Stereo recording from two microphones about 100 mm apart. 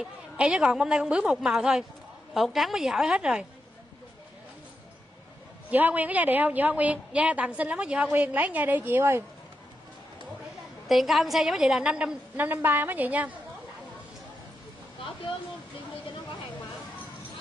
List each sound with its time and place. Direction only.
0.0 s a woman's voice: 10° right (ahead or behind)
5.7 s a woman's voice: 15° right (ahead or behind)
10.9 s a woman's voice: centre (ahead or behind)